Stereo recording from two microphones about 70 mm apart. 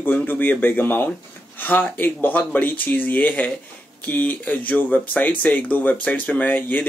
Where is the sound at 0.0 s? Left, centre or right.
Left.